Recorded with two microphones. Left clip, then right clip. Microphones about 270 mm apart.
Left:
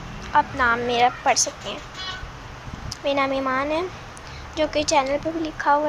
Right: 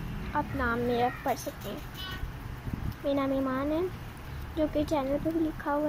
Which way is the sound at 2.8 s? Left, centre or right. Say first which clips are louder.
Left 8 dB; left.